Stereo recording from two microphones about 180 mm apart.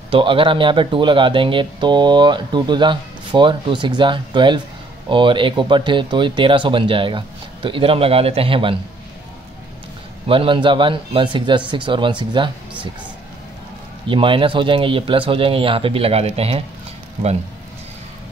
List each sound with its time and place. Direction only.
0.1 s speech: 30° right (ahead or behind)
10.2 s speech: 30° right (ahead or behind)
14.0 s speech: 30° right (ahead or behind)